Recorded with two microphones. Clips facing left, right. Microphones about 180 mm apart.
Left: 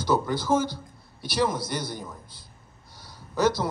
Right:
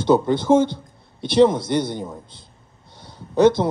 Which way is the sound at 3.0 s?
25° right (ahead or behind).